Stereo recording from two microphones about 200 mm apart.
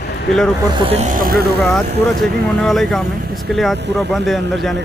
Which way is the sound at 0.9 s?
40° right (ahead or behind).